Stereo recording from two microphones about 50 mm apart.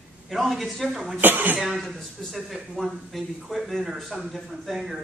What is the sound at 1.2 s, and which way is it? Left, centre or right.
Speech, right.